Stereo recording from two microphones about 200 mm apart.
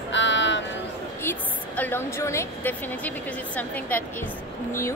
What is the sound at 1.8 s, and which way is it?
A woman's voice, 10° left (ahead or behind).